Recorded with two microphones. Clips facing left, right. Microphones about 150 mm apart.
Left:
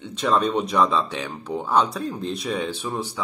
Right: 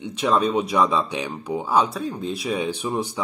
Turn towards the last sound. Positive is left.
turn(degrees=-15)  # may be behind; listen again after turning